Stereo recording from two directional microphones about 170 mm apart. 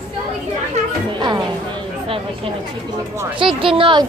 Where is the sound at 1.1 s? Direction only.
25° right (ahead or behind).